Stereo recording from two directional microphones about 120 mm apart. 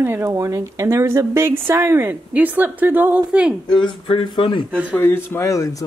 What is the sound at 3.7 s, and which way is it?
Speech, 45° left (ahead or behind).